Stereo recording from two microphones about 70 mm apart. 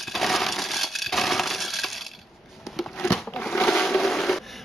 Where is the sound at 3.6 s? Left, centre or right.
Centre.